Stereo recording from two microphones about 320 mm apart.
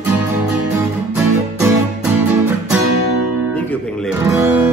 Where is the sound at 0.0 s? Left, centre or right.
Centre.